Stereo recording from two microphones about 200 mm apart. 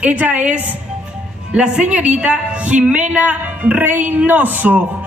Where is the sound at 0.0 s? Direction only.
5° right (ahead or behind).